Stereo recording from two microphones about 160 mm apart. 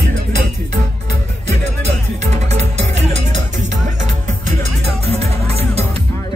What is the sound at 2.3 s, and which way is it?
Music, 45° right (ahead or behind).